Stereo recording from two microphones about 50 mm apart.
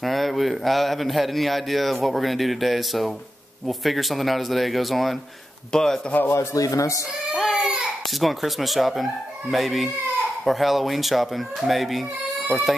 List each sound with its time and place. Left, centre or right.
0.0 s a man's voice: centre
5.7 s speech: centre
6.3 s a man's voice: left
7.3 s baby cry: centre
8.2 s a man's voice: centre